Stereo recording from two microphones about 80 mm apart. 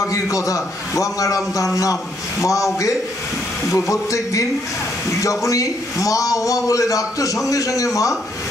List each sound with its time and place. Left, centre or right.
0.0 s a man's voice: left